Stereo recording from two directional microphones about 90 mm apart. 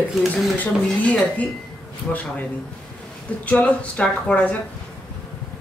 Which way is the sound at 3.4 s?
15° left (ahead or behind).